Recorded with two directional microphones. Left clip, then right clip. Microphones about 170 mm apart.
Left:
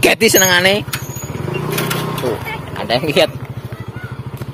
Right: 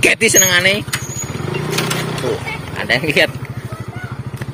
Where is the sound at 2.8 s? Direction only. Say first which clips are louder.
Even; 15° left (ahead or behind).